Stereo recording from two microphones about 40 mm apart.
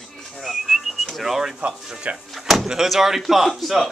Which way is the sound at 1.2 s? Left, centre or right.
Centre.